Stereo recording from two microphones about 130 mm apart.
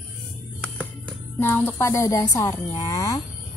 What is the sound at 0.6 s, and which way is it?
Speech, 10° left (ahead or behind).